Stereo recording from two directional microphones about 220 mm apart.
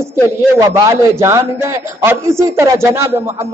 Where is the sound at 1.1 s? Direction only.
15° right (ahead or behind).